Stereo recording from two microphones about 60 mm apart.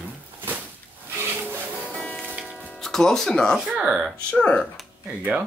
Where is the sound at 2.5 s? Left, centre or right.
Centre.